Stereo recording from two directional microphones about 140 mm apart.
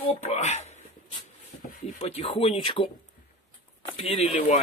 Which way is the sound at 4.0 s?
45° left (ahead or behind).